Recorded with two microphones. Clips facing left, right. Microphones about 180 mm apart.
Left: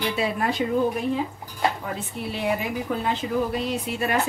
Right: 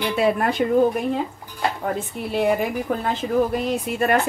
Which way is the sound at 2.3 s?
50° right (ahead or behind).